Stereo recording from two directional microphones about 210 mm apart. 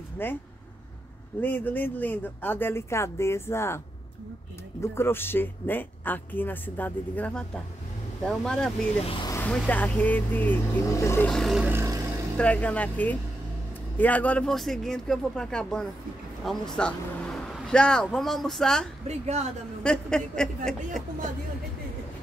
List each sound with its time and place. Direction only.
0.2 s speech: 10° left (ahead or behind)
1.4 s speech: 10° left (ahead or behind)
4.9 s speech: 10° left (ahead or behind)
9.0 s speech: 25° left (ahead or behind)
9.3 s vehicle: 10° left (ahead or behind)
9.6 s speech: 5° left (ahead or behind); by 12.0 s 10° right (ahead or behind)
12.4 s speech: 5° left (ahead or behind)
19.0 s speech: 30° right (ahead or behind)
19.8 s speech: 5° left (ahead or behind)